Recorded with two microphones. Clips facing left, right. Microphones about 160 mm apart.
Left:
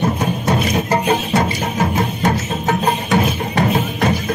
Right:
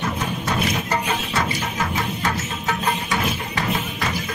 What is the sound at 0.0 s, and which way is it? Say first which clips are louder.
Music: left 7 dB; 35° left (ahead or behind).